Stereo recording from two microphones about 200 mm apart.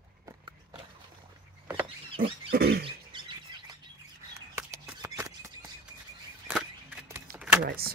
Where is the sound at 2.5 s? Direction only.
50° right (ahead or behind).